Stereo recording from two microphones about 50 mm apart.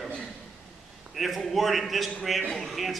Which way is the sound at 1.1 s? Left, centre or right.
Centre.